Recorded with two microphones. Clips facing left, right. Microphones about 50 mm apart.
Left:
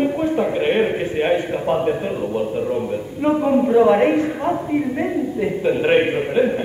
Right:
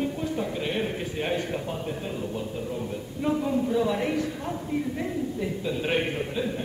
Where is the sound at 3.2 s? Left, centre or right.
Left.